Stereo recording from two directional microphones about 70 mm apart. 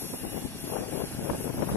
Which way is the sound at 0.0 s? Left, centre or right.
Left.